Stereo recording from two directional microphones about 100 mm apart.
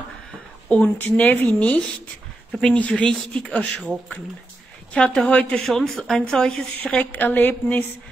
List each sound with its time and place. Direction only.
0.7 s speech: 15° left (ahead or behind)